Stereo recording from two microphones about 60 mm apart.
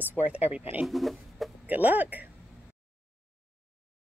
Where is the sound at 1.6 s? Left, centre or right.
Right.